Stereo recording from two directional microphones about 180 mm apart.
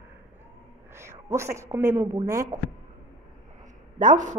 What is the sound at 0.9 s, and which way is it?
A man's voice, 15° right (ahead or behind).